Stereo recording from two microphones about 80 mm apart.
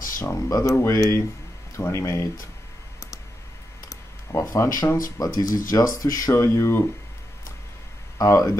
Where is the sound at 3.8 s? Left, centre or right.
Left.